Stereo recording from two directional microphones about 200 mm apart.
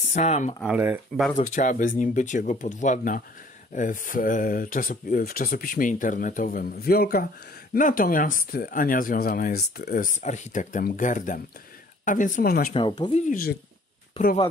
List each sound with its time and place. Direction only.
0.1 s speech: 35° left (ahead or behind)
0.7 s speech: 10° right (ahead or behind)
1.3 s speech: 40° left (ahead or behind)
12.7 s speech: 25° left (ahead or behind)
13.1 s speech: 45° left (ahead or behind)
14.1 s speech: 35° left (ahead or behind)